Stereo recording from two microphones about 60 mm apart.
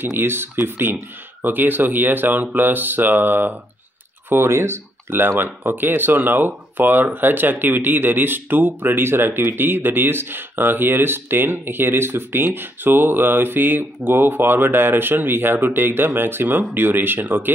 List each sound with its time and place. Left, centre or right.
0.0 s speech: right
4.3 s speech: right